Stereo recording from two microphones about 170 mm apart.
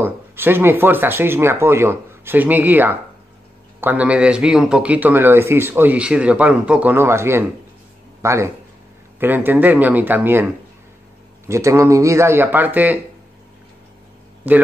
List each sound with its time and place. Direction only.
0.0 s speech: 10° right (ahead or behind)
11.4 s speech: 15° right (ahead or behind)
14.5 s speech: 10° right (ahead or behind)